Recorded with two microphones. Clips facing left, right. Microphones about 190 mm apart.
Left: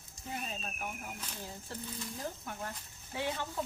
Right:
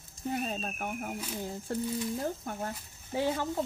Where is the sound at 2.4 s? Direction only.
40° right (ahead or behind).